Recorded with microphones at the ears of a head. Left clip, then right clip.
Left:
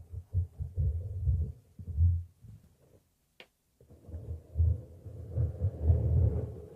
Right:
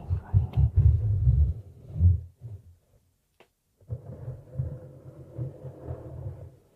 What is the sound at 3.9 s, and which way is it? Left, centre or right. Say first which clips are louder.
Thunder: right 8 dB; right.